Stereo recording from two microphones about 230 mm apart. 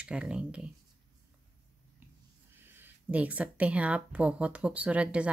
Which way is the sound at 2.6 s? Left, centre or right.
Centre.